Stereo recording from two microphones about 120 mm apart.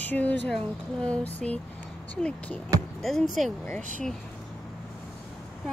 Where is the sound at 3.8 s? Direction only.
90° right.